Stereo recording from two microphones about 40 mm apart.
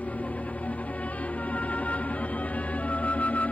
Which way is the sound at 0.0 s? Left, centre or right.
Left.